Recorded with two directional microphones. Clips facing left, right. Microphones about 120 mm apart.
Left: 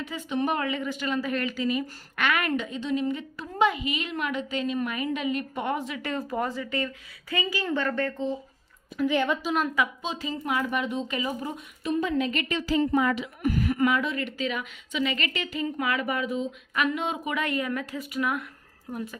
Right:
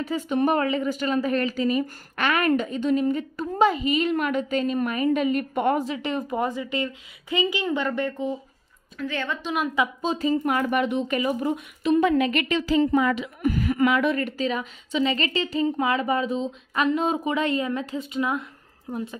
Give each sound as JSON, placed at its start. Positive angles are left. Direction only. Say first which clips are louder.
{"t": 0.0, "sound": "a woman's voice", "louder": "right 5 dB", "side_deg": -45}
{"t": 6.0, "sound": "a woman's voice", "louder": "right 3 dB", "side_deg": -20}
{"t": 8.9, "sound": "a woman's voice", "louder": "left 5 dB", "side_deg": 15}
{"t": 10.0, "sound": "speech", "louder": "right 8 dB", "side_deg": -45}
{"t": 13.7, "sound": "a woman's voice", "louder": "right 4 dB", "side_deg": -80}
{"t": 14.1, "sound": "a woman's voice", "louder": "right 4 dB", "side_deg": -40}